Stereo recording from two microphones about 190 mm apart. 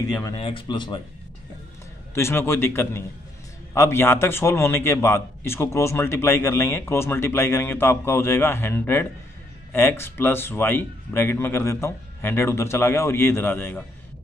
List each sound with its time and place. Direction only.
0.1 s speech: 20° left (ahead or behind)
2.1 s a man's voice: 15° left (ahead or behind)